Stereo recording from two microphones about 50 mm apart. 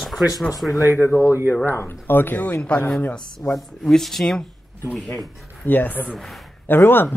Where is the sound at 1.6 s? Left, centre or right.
Left.